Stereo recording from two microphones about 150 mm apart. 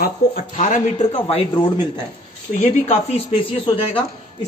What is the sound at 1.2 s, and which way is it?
Speech, 35° left (ahead or behind).